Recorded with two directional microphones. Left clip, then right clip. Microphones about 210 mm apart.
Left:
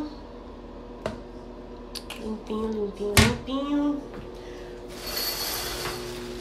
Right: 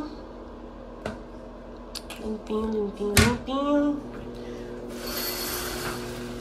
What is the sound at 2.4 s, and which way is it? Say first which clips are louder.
A woman's voice: right 1 dB; 10° left (ahead or behind).